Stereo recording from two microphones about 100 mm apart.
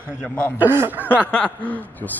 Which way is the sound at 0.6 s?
20° right (ahead or behind).